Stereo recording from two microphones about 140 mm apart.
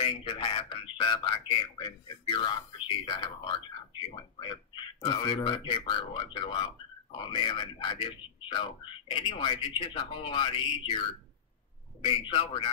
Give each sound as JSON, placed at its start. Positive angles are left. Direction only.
{"t": 0.0, "sound": "a man's voice", "side_deg": 40}